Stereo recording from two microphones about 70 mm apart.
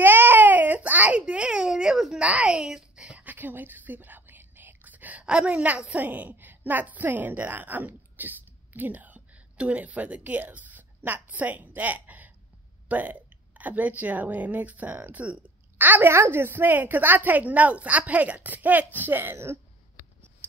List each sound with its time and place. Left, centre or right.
0.0 s baby cry: right; by 2.1 s centre
2.1 s a sound: centre
3.2 s whispering: right
5.9 s a woman's voice: right